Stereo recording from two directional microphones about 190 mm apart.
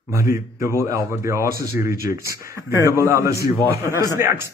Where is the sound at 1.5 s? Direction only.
55° left (ahead or behind).